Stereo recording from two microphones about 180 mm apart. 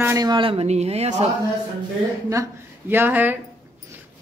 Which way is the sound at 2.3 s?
15° right (ahead or behind).